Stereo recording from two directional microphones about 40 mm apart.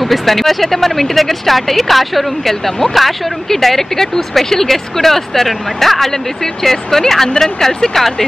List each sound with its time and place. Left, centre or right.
0.0 s speech: centre